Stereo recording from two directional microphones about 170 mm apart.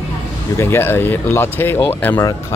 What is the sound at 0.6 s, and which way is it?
Speech, 15° left (ahead or behind).